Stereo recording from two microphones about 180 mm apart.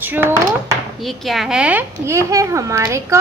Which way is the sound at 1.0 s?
Centre (ahead or behind).